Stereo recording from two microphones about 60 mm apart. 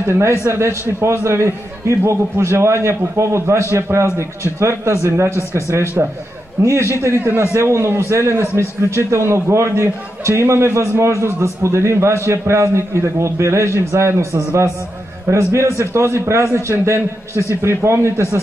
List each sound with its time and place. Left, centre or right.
0.0 s a man's voice: right
6.0 s a man's voice: right
7.0 s a man's voice: right